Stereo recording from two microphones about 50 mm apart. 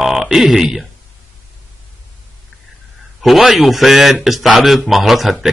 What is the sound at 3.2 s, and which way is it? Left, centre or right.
Speech, centre.